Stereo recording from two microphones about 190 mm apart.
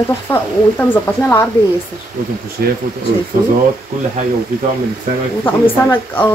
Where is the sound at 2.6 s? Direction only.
55° right (ahead or behind).